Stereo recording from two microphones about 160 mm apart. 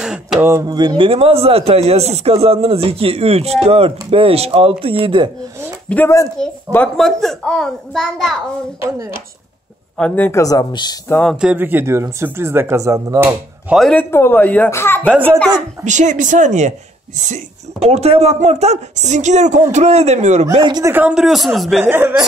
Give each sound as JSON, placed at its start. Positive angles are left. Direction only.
{"t": 0.0, "sound": "a sound", "side_deg": -5}
{"t": 0.5, "sound": "a man's voice", "side_deg": -20}
{"t": 5.9, "sound": "a child's voice", "side_deg": 15}
{"t": 8.8, "sound": "speech", "side_deg": -20}
{"t": 9.9, "sound": "speech", "side_deg": 10}
{"t": 11.1, "sound": "speech", "side_deg": 10}
{"t": 11.3, "sound": "speech", "side_deg": -10}
{"t": 13.7, "sound": "a child's voice", "side_deg": 0}
{"t": 14.1, "sound": "speech", "side_deg": 15}
{"t": 15.0, "sound": "speech", "side_deg": -10}
{"t": 15.8, "sound": "speech", "side_deg": -50}
{"t": 20.5, "sound": "speech", "side_deg": -30}
{"t": 20.8, "sound": "a child's voice", "side_deg": -10}
{"t": 21.8, "sound": "speech", "side_deg": -15}